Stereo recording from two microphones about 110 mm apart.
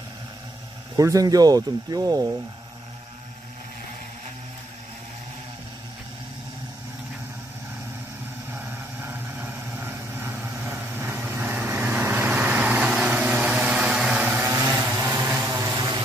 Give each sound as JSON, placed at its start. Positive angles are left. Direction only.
{"t": 0.9, "sound": "speech", "side_deg": -30}
{"t": 8.5, "sound": "vehicle", "side_deg": -20}